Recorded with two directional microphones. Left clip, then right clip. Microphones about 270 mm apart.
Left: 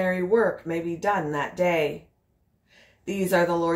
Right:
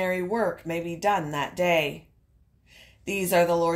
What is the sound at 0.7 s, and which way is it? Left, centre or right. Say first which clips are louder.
Speech: even; right.